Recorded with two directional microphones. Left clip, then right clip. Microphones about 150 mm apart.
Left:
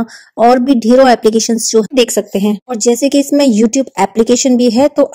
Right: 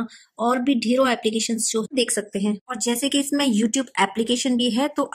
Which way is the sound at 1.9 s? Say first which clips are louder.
Left 12 dB; 25° left (ahead or behind).